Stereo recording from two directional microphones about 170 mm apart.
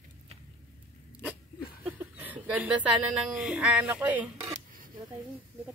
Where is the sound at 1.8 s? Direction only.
10° right (ahead or behind).